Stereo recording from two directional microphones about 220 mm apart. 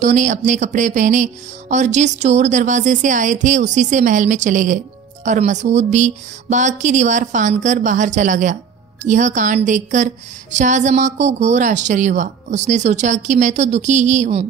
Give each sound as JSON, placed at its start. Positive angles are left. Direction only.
{"t": 0.0, "sound": "speech", "side_deg": -35}